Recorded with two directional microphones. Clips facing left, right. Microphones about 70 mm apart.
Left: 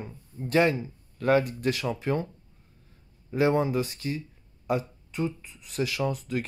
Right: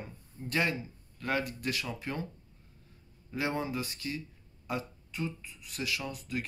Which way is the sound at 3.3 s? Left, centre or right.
Left.